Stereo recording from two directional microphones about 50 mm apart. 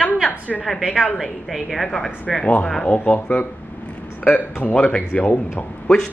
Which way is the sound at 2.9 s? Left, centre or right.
Left.